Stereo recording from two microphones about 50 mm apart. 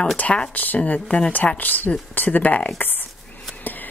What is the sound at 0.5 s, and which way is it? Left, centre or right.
Speech, left.